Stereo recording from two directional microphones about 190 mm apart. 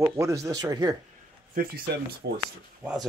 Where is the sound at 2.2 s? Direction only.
65° right (ahead or behind).